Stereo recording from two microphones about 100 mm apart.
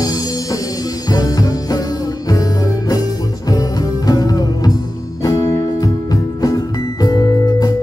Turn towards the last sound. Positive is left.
turn(degrees=40)  # may be behind; listen again after turning